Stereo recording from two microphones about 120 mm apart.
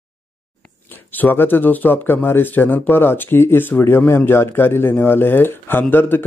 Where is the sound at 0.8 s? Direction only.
15° left (ahead or behind).